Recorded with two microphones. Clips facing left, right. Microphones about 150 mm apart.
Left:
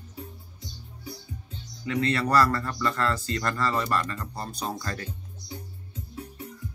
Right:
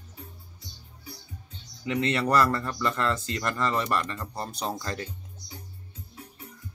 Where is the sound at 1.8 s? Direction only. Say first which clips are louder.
Even; 20° right (ahead or behind).